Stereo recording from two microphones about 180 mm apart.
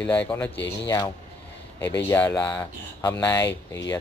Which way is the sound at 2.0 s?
15° left (ahead or behind).